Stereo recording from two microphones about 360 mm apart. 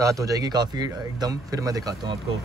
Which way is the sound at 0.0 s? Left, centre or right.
Centre.